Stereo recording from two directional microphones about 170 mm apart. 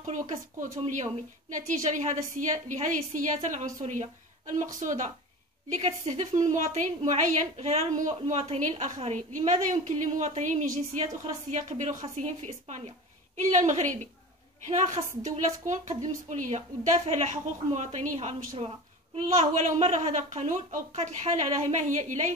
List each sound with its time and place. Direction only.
0.6 s a woman's voice: 50° right (ahead or behind)